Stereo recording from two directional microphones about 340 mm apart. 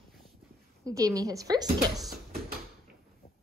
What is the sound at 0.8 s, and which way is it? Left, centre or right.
Speech, centre.